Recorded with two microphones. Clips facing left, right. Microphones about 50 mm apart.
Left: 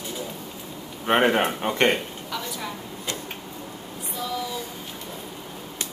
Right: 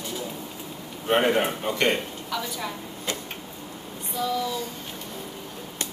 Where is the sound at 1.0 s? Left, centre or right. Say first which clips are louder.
Left 2 dB; left.